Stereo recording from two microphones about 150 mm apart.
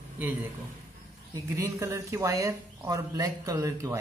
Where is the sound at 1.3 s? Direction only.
20° right (ahead or behind).